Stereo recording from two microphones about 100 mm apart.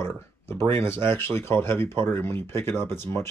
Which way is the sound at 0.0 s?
25° left (ahead or behind).